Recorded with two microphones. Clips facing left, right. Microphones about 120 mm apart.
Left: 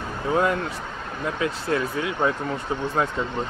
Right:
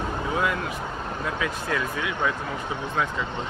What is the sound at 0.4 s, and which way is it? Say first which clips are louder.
Speech: left 5 dB; 35° left (ahead or behind).